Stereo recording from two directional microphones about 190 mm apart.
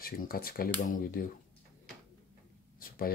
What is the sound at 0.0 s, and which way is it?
Speech, 50° left (ahead or behind).